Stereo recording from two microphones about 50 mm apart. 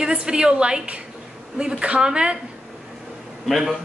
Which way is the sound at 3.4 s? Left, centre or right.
Centre.